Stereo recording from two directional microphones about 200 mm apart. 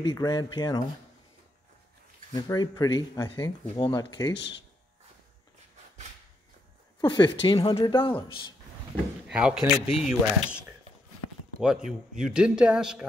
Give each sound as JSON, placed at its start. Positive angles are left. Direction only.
{"t": 0.0, "sound": "speech", "side_deg": 20}
{"t": 2.3, "sound": "speech", "side_deg": 20}
{"t": 4.3, "sound": "speech", "side_deg": 60}
{"t": 7.0, "sound": "speech", "side_deg": 20}
{"t": 9.3, "sound": "speech", "side_deg": -5}
{"t": 11.6, "sound": "speech", "side_deg": -5}